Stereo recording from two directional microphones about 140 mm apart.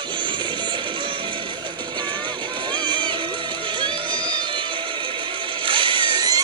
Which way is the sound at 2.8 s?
35° right (ahead or behind).